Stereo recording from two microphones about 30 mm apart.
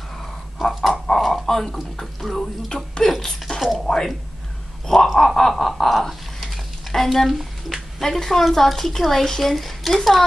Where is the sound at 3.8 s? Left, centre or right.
Centre.